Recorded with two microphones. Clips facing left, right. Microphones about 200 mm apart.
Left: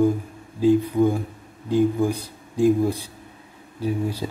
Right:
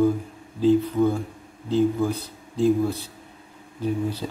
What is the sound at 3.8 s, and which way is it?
Speech, 10° left (ahead or behind).